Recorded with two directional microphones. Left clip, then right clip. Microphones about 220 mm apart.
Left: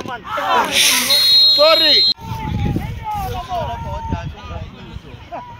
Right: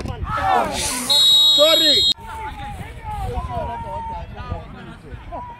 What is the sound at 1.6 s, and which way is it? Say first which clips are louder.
Speech: left 3 dB; 55° right (ahead or behind).